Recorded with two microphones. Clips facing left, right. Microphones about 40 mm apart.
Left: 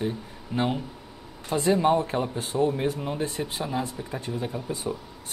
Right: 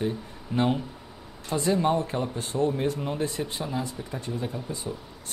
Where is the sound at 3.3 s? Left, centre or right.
Centre.